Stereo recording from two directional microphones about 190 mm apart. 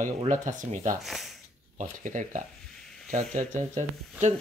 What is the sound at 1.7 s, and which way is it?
Speech, 40° right (ahead or behind).